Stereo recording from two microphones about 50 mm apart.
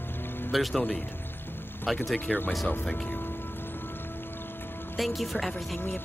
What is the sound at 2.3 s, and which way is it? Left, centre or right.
Speech, left.